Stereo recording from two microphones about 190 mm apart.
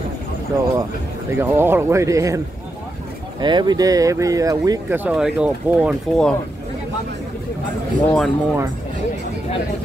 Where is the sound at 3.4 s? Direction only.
25° right (ahead or behind); by 6.2 s 5° right (ahead or behind).